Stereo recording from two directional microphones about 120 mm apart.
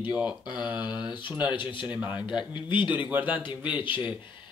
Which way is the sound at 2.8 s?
15° right (ahead or behind).